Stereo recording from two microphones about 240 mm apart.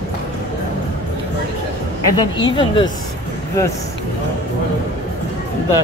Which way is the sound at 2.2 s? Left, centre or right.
Centre.